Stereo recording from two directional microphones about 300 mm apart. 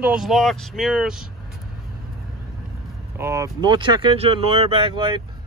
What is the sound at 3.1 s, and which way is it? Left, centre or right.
Speech, centre.